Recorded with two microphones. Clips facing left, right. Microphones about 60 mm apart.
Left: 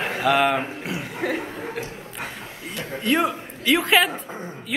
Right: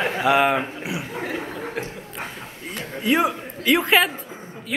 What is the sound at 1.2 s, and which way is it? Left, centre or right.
Speech, left.